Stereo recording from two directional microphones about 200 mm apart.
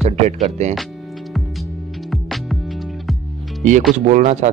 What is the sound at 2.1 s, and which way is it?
Music, centre (ahead or behind).